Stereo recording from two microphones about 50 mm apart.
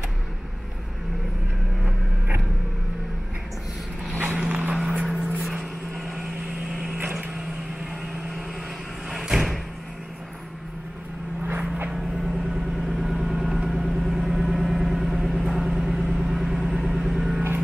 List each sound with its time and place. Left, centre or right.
4.5 s vehicle: right
4.9 s vehicle: centre
9.1 s a sound: centre
11.9 s vehicle: centre